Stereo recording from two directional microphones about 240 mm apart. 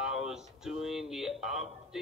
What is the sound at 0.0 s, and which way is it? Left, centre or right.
Music, centre.